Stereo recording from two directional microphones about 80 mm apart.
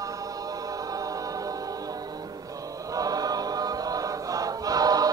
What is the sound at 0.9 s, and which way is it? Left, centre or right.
Choir, right.